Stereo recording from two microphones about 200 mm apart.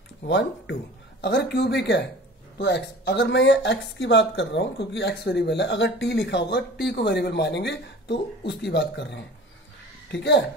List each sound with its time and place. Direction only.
0.3 s speech: 60° left (ahead or behind)